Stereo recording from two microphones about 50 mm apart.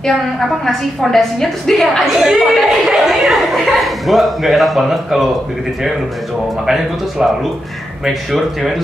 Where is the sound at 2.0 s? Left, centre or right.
Centre.